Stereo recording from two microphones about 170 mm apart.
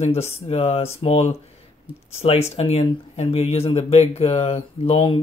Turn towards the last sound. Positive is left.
turn(degrees=35)  # may be behind; listen again after turning